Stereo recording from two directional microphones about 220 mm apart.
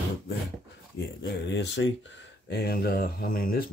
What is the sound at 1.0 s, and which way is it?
Speech, 50° left (ahead or behind).